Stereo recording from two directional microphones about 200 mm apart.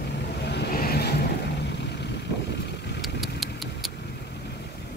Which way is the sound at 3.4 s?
Centre (ahead or behind).